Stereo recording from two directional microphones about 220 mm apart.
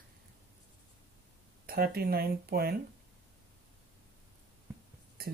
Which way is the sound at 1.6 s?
45° right (ahead or behind).